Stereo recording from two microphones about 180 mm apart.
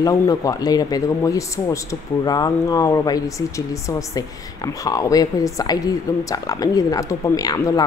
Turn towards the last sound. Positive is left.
turn(degrees=20)  # may be behind; listen again after turning